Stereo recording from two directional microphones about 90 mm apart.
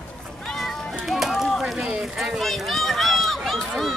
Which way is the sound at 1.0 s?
Centre (ahead or behind).